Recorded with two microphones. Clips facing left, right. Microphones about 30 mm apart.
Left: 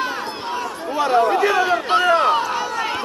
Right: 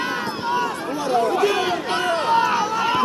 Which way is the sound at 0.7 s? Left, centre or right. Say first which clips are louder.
Right 1 dB; centre.